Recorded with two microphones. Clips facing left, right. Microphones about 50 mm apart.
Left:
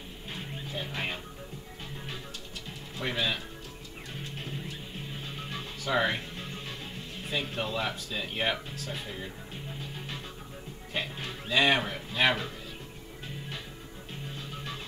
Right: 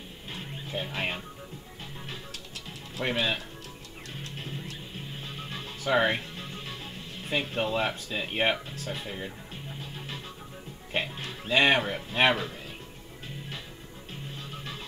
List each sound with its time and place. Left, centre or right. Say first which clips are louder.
0.9 s speech: right 2 dB; right
3.1 s speech: right 2 dB; right
5.9 s speech: right 3 dB; right
7.2 s speech: right 4 dB; right
10.9 s music: right 3 dB; right
11.4 s speech: right 2 dB; right